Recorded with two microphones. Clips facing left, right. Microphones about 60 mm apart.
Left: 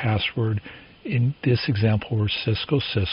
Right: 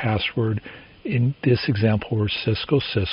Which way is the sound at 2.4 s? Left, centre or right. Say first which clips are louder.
Right 2 dB; right.